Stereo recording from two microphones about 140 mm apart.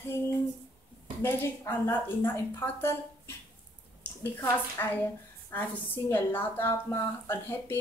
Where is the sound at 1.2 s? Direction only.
15° left (ahead or behind).